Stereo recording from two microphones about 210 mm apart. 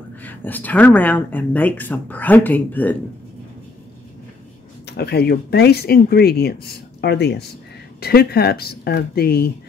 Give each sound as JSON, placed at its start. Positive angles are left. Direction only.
{"t": 0.2, "sound": "speech", "side_deg": 10}
{"t": 4.8, "sound": "speech", "side_deg": 50}